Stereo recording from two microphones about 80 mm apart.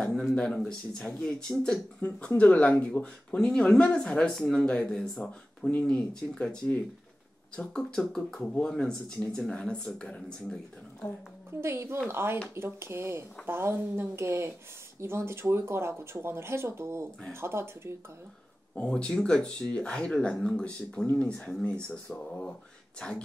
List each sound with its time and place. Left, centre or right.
0.0 s speech: centre
11.6 s speech: right
18.8 s speech: centre